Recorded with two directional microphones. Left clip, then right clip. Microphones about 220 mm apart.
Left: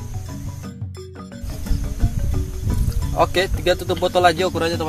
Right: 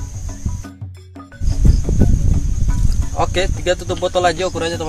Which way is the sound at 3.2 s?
15° left (ahead or behind).